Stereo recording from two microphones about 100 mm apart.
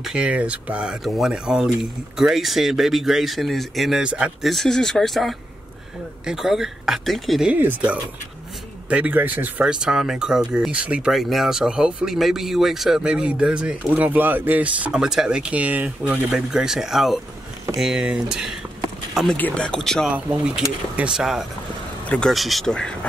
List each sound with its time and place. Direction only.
0.0 s speech: 10° right (ahead or behind)
4.0 s speech: 10° right (ahead or behind)
4.5 s speech: 5° left (ahead or behind)
7.4 s speech: 15° right (ahead or behind)
16.3 s speech: 5° right (ahead or behind)
19.3 s speech: 15° left (ahead or behind)
20.1 s speech: 15° right (ahead or behind)
22.0 s a sound: 10° left (ahead or behind)
22.3 s speech: centre (ahead or behind)